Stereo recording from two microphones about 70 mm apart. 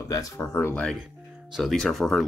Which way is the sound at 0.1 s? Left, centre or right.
Left.